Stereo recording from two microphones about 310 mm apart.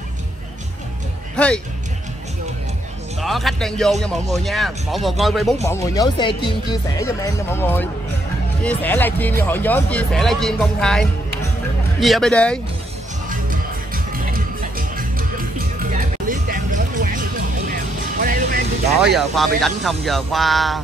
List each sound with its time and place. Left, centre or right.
1.3 s music: centre
3.2 s speech: centre
13.3 s music: right
19.1 s speech: centre